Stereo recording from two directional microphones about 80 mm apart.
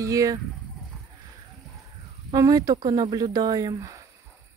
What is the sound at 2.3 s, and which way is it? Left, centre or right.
Speech, right.